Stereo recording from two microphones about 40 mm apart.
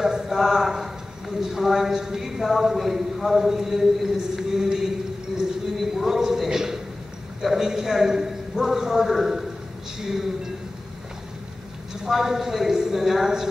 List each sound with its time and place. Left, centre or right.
0.0 s a woman's voice: centre
5.8 s a sound: centre
7.4 s a woman's voice: centre
12.0 s a woman's voice: centre